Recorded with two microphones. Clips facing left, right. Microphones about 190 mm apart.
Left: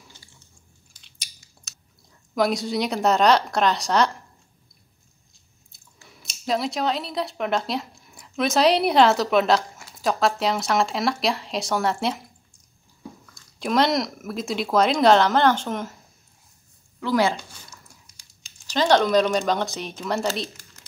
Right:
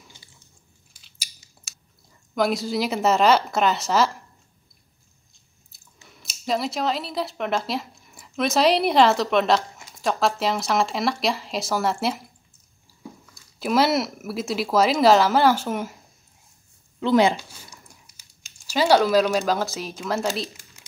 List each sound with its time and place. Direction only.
1.0 s chewing: 5° right (ahead or behind)
2.3 s speech: centre (ahead or behind)
6.0 s speech: centre (ahead or behind)
13.2 s speech: 5° right (ahead or behind)
17.0 s speech: 20° right (ahead or behind)
17.4 s typing: 5° right (ahead or behind)
20.0 s speech: centre (ahead or behind)